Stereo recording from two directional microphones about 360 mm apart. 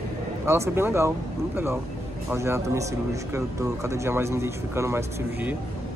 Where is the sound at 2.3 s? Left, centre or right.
Centre.